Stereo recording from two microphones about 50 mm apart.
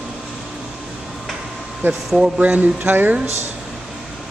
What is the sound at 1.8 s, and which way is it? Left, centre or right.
Speech, right.